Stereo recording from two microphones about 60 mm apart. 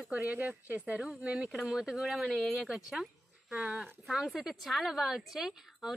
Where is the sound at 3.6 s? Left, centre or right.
Centre.